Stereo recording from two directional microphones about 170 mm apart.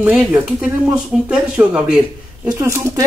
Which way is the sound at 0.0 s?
10° right (ahead or behind).